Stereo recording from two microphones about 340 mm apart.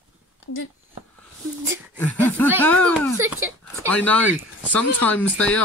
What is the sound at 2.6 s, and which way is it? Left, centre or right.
Speech, centre.